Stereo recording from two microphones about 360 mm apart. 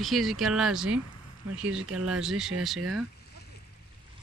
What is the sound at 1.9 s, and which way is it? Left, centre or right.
Speech, right.